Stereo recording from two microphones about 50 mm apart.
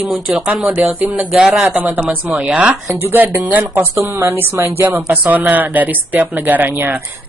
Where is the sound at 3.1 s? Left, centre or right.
Right.